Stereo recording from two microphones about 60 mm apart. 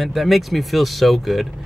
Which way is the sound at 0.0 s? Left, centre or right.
Centre.